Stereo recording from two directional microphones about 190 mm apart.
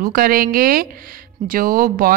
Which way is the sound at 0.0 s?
50° right (ahead or behind).